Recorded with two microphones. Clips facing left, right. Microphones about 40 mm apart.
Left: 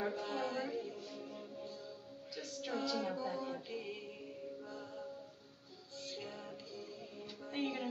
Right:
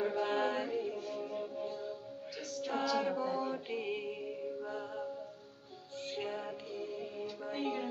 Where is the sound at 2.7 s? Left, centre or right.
Right.